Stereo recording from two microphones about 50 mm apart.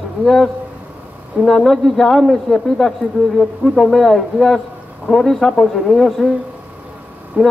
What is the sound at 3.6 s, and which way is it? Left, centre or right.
Speech, left.